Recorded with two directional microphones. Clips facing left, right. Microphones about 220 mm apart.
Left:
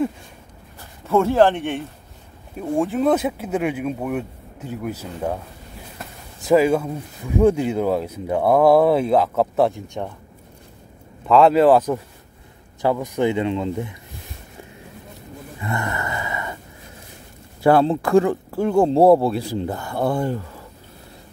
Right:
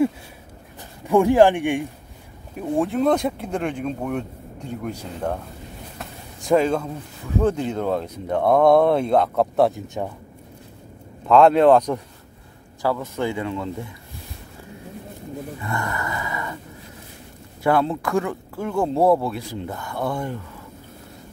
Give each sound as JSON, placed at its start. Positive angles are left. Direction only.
{"t": 1.0, "sound": "speech", "side_deg": -15}
{"t": 2.6, "sound": "speech", "side_deg": 0}
{"t": 11.2, "sound": "speech", "side_deg": 0}
{"t": 12.8, "sound": "speech", "side_deg": 15}
{"t": 15.6, "sound": "a sound", "side_deg": 20}
{"t": 17.6, "sound": "speech", "side_deg": 30}